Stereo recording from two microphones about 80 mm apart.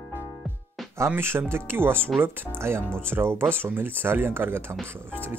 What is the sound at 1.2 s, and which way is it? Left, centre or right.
Speech, right.